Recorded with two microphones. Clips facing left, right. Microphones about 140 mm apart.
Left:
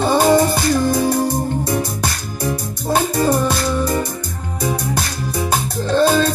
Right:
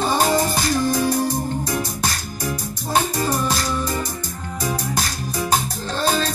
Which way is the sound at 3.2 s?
60° left (ahead or behind).